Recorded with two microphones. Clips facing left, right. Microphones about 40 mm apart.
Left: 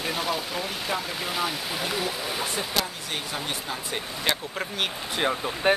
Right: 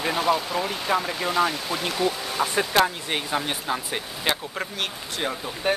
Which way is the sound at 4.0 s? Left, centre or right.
Centre.